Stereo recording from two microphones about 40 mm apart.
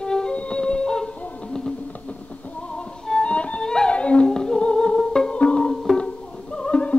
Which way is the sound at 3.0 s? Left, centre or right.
Left.